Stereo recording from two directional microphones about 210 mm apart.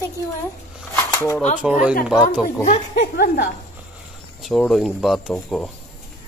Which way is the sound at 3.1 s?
50° left (ahead or behind).